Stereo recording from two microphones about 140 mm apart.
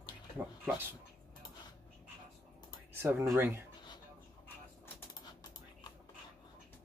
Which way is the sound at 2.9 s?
15° right (ahead or behind).